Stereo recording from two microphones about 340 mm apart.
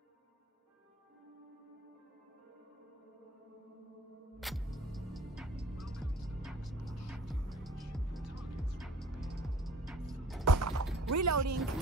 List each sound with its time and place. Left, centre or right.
4.4 s music: centre
10.4 s music: right
11.0 s speech: right